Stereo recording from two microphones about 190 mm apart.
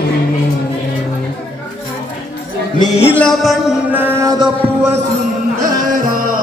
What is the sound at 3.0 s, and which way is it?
Music, 5° left (ahead or behind).